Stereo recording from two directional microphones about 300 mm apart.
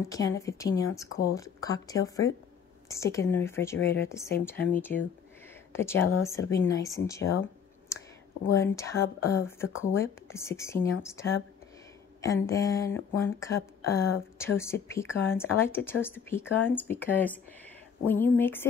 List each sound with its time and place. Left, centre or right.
0.0 s speech: centre
4.9 s speech: left
5.7 s speech: centre
8.5 s speech: centre